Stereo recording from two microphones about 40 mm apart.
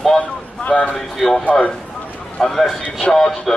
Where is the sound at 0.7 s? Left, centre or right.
Left.